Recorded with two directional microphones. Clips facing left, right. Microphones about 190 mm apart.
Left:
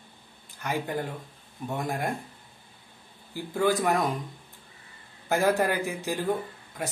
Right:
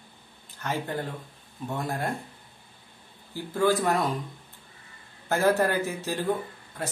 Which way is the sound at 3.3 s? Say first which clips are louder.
Right 1 dB; 15° left (ahead or behind).